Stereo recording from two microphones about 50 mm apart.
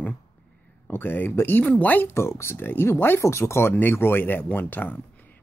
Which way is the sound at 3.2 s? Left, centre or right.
Left.